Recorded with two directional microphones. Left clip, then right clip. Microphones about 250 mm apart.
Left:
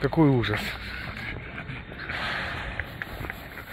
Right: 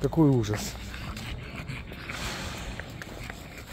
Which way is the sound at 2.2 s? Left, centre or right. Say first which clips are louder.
Left 7 dB; right.